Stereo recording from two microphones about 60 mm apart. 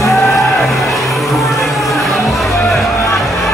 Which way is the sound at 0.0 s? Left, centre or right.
Left.